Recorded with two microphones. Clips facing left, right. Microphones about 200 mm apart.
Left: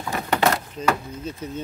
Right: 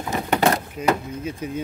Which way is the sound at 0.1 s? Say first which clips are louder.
Right 2 dB; 20° right (ahead or behind).